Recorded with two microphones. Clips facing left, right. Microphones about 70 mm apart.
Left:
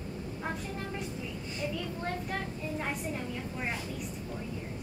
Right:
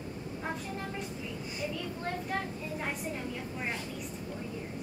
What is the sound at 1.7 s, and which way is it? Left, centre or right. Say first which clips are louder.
A child's voice: left 1 dB; centre.